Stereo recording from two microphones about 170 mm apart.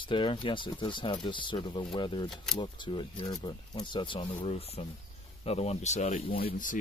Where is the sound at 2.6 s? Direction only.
25° left (ahead or behind).